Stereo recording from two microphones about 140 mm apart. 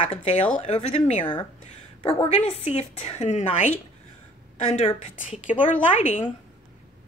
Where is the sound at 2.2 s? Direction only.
45° left (ahead or behind).